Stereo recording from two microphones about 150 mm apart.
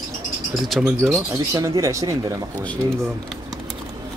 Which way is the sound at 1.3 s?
20° right (ahead or behind).